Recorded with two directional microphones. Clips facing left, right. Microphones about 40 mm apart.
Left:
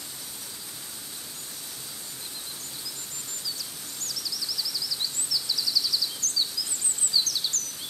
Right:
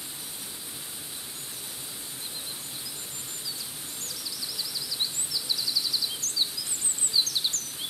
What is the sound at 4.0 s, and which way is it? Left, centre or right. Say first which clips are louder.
Bird: left 4 dB; right.